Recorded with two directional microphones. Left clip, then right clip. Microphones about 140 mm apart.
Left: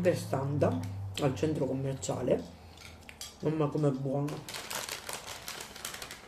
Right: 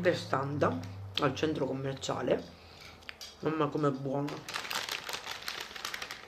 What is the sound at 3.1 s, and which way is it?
Cutlery, 20° left (ahead or behind).